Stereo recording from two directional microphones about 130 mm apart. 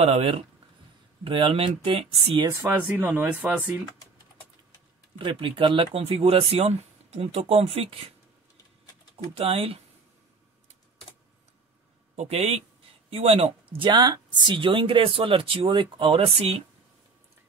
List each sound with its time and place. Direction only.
0.0 s a woman's voice: 50° right (ahead or behind)
2.6 s speech: 15° right (ahead or behind)
5.2 s a woman's voice: 40° right (ahead or behind)
9.1 s a woman's voice: 50° right (ahead or behind)
12.2 s a woman's voice: 55° right (ahead or behind)